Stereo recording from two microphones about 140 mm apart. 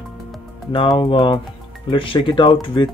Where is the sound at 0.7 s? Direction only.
35° left (ahead or behind).